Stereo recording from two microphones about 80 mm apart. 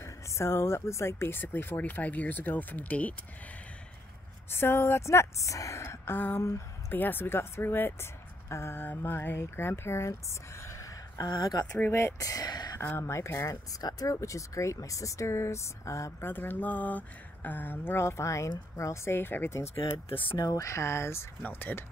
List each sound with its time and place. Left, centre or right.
0.0 s a woman's voice: left; by 3.2 s centre
4.5 s a woman's voice: left
11.3 s speech: left
11.8 s speech: left
13.0 s speech: left
16.3 s a woman's voice: left
20.3 s speech: left